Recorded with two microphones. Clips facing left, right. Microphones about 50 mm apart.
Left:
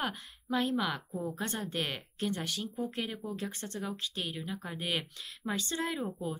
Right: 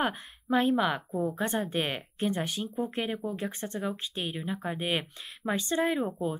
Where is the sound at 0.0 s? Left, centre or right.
Right.